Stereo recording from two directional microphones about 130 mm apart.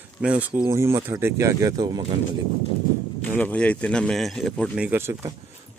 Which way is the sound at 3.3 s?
10° left (ahead or behind).